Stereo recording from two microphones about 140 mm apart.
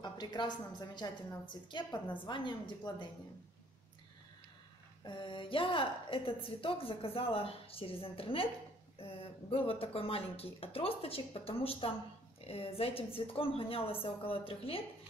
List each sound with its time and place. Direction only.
0.0 s a woman's voice: 30° left (ahead or behind)
5.0 s a woman's voice: 35° left (ahead or behind)